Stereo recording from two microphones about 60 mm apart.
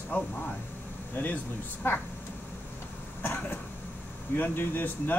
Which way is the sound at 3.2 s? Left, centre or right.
Left.